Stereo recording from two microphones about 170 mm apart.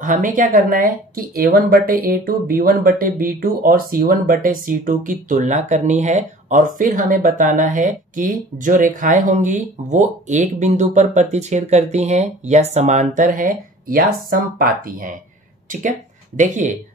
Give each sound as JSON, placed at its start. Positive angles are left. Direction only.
{"t": 0.0, "sound": "speech", "side_deg": -50}
{"t": 16.3, "sound": "speech", "side_deg": -50}